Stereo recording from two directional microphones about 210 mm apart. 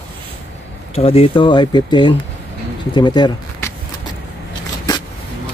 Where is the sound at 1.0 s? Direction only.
25° left (ahead or behind).